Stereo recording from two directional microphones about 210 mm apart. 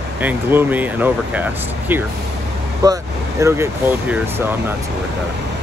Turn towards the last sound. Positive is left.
turn(degrees=-10)  # may be behind; listen again after turning